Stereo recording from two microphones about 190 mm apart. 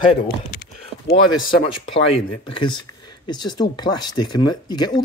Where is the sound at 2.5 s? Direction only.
25° left (ahead or behind).